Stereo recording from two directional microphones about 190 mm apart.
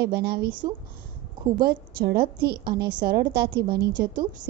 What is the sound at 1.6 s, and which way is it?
A woman's voice, 55° right (ahead or behind).